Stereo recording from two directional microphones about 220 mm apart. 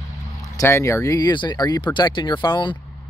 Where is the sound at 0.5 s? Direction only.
10° left (ahead or behind).